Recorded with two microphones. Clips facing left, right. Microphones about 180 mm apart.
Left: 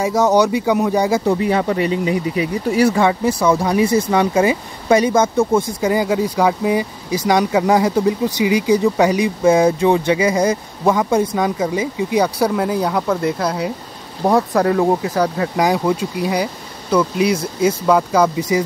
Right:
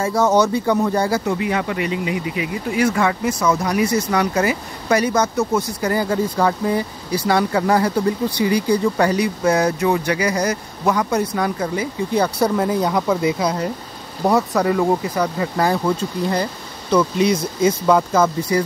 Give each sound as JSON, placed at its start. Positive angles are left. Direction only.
{"t": 0.0, "sound": "speech", "side_deg": 15}
{"t": 1.2, "sound": "speech", "side_deg": 35}
{"t": 12.4, "sound": "speech", "side_deg": 5}